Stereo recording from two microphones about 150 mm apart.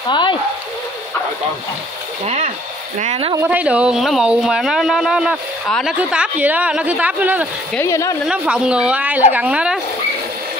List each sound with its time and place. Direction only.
0.1 s speech: 30° left (ahead or behind)
2.2 s speech: 45° right (ahead or behind)
3.4 s speech: 10° right (ahead or behind)
5.9 s speech: 10° right (ahead or behind)
7.8 s speech: 20° left (ahead or behind)
8.3 s speech: 5° right (ahead or behind)